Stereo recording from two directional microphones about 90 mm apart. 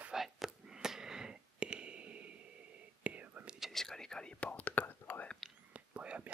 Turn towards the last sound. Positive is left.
turn(degrees=-15)  # may be behind; listen again after turning